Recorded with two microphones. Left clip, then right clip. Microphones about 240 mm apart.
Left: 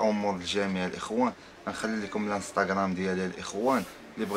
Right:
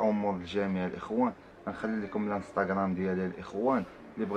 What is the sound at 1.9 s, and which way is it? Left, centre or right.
Speech, centre.